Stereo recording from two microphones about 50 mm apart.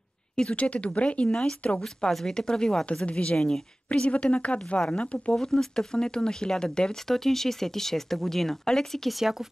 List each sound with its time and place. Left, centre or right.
0.4 s speech: left
1.3 s speech: centre
4.0 s speech: left
5.3 s speech: centre
9.2 s speech: centre